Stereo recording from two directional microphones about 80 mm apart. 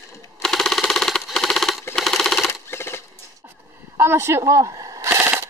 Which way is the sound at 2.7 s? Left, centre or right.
Left.